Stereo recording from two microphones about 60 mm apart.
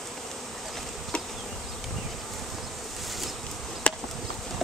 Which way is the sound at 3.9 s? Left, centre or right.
Centre.